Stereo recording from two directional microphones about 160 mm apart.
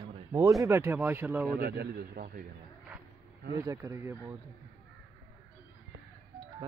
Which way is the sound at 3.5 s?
20° right (ahead or behind).